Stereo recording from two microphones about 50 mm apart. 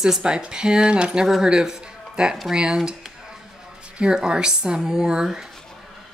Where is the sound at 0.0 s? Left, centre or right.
Centre.